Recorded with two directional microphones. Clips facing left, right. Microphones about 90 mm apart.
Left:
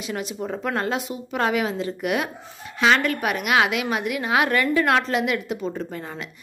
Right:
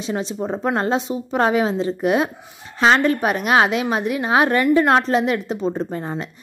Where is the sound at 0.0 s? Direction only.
30° right (ahead or behind).